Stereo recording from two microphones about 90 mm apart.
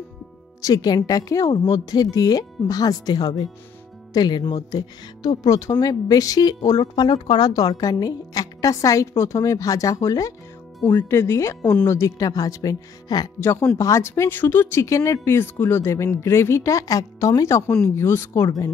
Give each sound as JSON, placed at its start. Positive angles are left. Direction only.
{"t": 0.6, "sound": "speech", "side_deg": 45}
{"t": 6.8, "sound": "speech", "side_deg": 55}
{"t": 13.4, "sound": "speech", "side_deg": 30}